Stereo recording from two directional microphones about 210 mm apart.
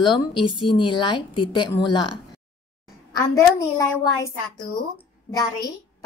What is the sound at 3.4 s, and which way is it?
A child's voice, 15° left (ahead or behind).